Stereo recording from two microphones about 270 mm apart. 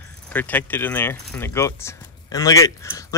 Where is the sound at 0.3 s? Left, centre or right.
Centre.